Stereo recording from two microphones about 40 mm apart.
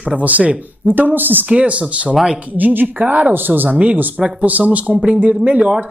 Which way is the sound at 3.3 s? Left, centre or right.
Right.